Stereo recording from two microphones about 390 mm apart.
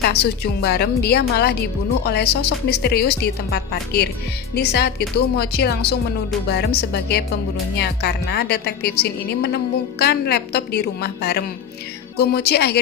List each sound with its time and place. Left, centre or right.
0.0 s a woman's voice: left